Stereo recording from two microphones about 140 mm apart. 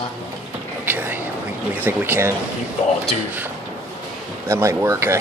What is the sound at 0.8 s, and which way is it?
Vehicle, 15° right (ahead or behind).